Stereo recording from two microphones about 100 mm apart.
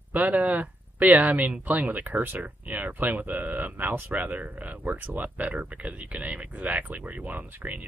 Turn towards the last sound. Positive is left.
turn(degrees=-20)  # may be behind; listen again after turning